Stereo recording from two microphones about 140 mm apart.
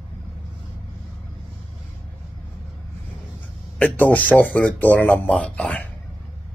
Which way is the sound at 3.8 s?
10° left (ahead or behind).